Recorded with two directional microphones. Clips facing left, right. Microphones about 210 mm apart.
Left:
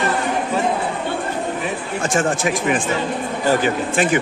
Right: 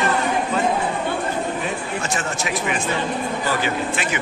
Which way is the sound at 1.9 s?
50° left (ahead or behind).